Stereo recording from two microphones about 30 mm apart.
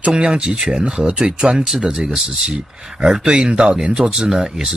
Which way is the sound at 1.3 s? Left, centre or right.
Right.